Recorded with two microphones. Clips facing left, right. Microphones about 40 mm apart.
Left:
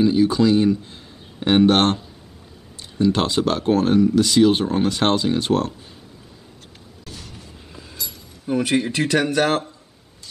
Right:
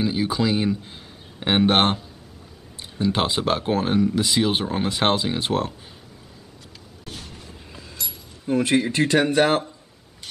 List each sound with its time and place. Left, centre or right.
0.0 s speech: centre
8.6 s speech: centre
8.9 s speech: centre
10.2 s a sound: right